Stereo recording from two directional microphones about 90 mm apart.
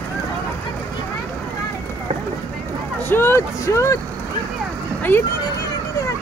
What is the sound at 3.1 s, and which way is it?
Vehicle, 25° left (ahead or behind).